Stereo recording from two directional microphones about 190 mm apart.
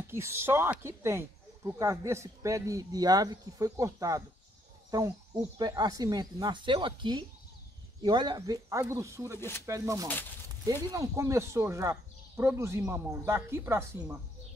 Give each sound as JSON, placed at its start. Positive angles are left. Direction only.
{"t": 0.1, "sound": "speech", "side_deg": -15}